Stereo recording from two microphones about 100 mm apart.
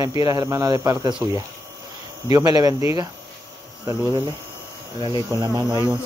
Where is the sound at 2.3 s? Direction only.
40° right (ahead or behind).